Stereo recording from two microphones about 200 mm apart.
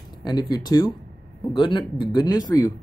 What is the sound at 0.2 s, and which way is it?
Speech, 20° left (ahead or behind).